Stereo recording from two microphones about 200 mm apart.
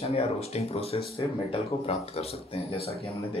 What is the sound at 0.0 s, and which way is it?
Speech, 30° left (ahead or behind).